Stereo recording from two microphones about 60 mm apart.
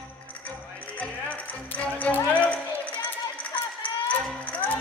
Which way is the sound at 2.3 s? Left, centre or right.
Left.